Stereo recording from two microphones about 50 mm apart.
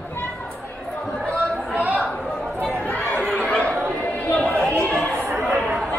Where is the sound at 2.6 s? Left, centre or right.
Left.